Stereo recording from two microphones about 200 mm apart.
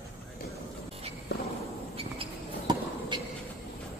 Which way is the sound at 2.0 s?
25° right (ahead or behind).